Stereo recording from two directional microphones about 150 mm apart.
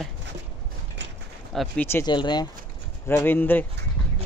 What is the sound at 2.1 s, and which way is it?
Speech, 30° left (ahead or behind).